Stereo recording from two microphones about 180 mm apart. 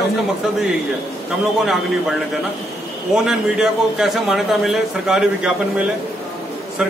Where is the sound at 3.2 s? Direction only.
5° right (ahead or behind).